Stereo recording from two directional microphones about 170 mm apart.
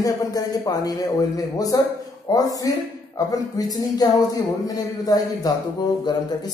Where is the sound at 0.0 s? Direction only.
20° left (ahead or behind).